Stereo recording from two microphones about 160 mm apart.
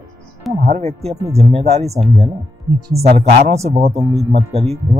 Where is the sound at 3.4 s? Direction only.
40° right (ahead or behind).